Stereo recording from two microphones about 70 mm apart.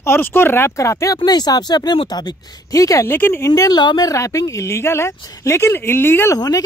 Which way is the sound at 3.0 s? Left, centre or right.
Left.